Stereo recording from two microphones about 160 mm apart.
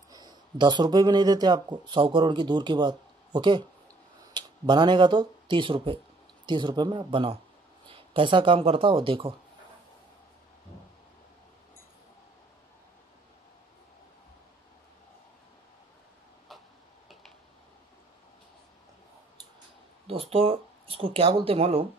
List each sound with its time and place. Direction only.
0.1 s speech: 25° right (ahead or behind)
20.1 s speech: 35° right (ahead or behind)